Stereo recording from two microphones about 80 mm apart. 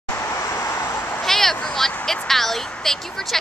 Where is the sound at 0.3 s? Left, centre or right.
Left.